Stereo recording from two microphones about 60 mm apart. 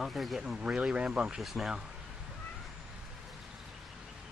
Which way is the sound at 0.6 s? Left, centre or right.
Centre.